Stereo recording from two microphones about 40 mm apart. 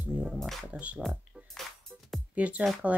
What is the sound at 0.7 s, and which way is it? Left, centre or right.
Speech, right.